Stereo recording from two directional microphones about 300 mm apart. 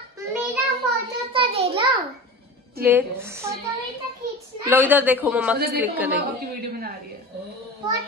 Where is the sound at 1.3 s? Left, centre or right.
Centre.